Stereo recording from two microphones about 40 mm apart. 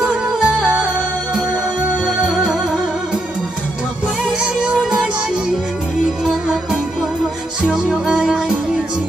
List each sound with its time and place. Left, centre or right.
0.0 s music: centre
2.0 s music: centre
4.4 s music: right
7.6 s music: centre